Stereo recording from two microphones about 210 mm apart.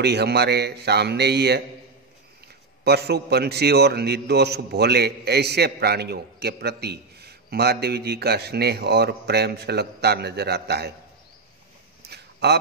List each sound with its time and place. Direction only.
0.0 s a man's voice: 50° right (ahead or behind)
2.8 s a man's voice: 50° right (ahead or behind)
12.0 s a sound: 50° right (ahead or behind)